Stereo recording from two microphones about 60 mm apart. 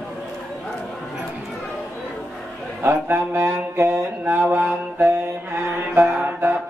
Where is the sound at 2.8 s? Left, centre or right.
Right.